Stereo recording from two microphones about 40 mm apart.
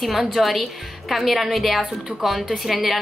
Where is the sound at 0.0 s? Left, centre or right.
Centre.